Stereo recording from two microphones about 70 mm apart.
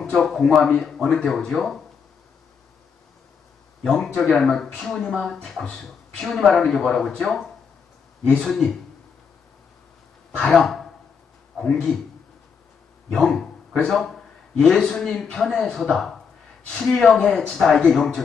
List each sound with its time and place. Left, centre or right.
0.1 s speech: centre
3.8 s speech: centre
8.5 s speech: centre
10.4 s speech: centre
13.1 s speech: centre